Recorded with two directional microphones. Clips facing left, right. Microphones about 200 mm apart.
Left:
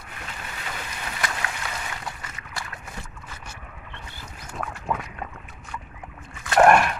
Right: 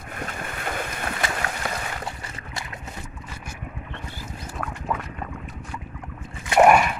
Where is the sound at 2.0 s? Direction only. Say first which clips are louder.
Right 2 dB; 30° right (ahead or behind).